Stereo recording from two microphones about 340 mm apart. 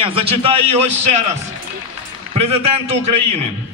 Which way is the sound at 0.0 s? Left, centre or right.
Centre.